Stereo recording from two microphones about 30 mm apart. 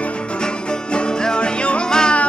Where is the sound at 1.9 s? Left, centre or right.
Left.